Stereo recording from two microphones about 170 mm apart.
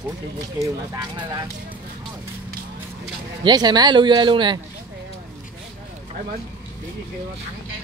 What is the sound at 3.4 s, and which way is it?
Speech, 25° right (ahead or behind).